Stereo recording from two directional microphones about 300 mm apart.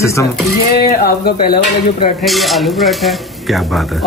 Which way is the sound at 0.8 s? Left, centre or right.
Left.